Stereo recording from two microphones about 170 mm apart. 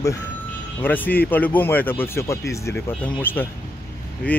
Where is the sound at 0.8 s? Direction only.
10° left (ahead or behind).